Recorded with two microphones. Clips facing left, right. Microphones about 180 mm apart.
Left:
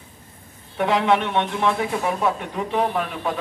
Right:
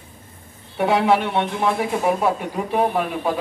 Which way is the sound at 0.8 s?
10° right (ahead or behind).